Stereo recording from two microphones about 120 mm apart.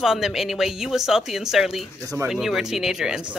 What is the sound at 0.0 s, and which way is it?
Speech, 5° right (ahead or behind).